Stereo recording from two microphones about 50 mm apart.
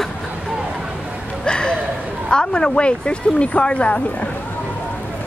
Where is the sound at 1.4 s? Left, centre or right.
Centre.